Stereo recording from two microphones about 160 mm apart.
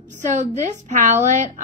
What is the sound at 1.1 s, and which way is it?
Speech, 45° right (ahead or behind).